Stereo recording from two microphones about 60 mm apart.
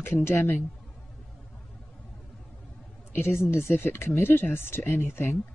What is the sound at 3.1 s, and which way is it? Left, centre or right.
Speech, left.